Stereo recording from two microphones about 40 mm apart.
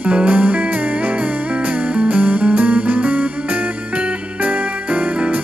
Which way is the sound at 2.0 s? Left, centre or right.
Right.